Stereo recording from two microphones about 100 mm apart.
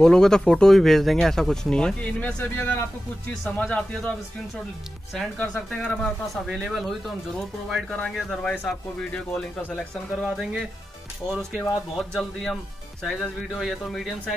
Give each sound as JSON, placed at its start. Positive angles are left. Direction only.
{"t": 0.0, "sound": "speech", "side_deg": 5}
{"t": 3.4, "sound": "speech", "side_deg": 10}
{"t": 5.4, "sound": "speech", "side_deg": 10}
{"t": 6.3, "sound": "speech", "side_deg": -5}
{"t": 9.3, "sound": "speech", "side_deg": 20}
{"t": 10.1, "sound": "speech", "side_deg": 0}